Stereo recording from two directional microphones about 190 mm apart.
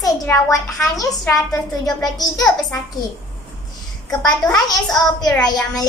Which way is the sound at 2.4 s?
Centre (ahead or behind).